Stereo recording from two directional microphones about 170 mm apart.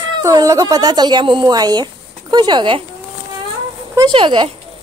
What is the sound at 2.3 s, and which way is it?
Speech, 25° right (ahead or behind).